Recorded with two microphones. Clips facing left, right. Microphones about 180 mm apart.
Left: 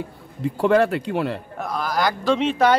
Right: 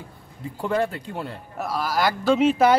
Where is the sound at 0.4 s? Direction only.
85° left.